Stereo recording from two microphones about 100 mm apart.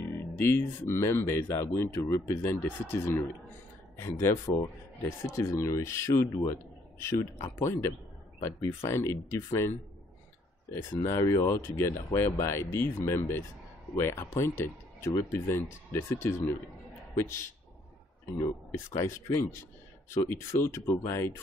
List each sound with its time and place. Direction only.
0.0 s speech: 20° left (ahead or behind)
18.7 s speech: 30° left (ahead or behind)